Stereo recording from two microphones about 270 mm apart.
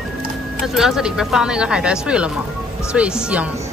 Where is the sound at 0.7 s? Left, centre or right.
Centre.